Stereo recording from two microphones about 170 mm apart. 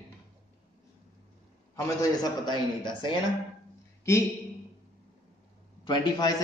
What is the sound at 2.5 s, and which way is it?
Speech, 30° left (ahead or behind).